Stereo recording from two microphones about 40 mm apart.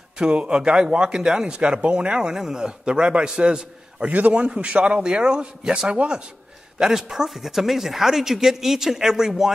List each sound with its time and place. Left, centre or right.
0.2 s speech: right
4.0 s a man's voice: right
4.3 s speech: right
5.0 s speech: right
6.8 s speech: centre